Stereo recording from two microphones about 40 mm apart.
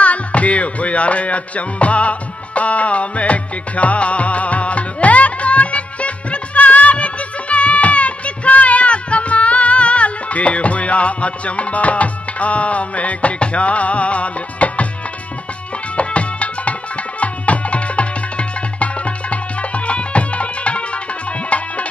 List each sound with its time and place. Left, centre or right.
0.0 s music: left
16.0 s music: left